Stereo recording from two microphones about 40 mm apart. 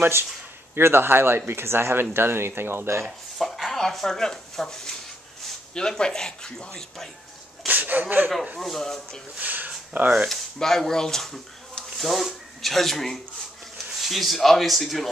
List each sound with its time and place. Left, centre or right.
0.7 s speech: right
3.3 s speech: centre
7.6 s speech: right
8.5 s speech: centre
9.4 s a sound: right
10.2 s speech: centre